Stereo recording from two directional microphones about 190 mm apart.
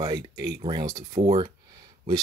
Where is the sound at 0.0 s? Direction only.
20° right (ahead or behind).